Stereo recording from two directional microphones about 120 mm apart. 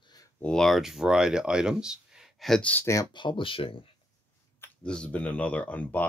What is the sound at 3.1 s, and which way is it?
Speech, 45° left (ahead or behind).